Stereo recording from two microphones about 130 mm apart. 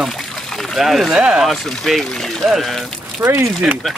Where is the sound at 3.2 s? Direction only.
20° right (ahead or behind).